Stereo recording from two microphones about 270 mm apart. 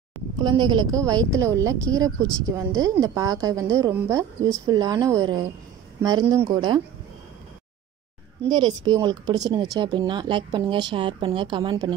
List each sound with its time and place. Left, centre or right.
0.4 s speech: centre
8.5 s speech: centre